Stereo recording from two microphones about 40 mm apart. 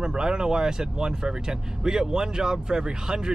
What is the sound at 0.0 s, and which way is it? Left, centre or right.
Speech, centre.